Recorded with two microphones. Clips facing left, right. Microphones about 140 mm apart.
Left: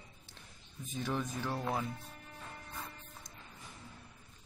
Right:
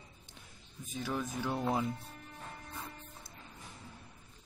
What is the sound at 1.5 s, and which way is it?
Speech, 15° right (ahead or behind).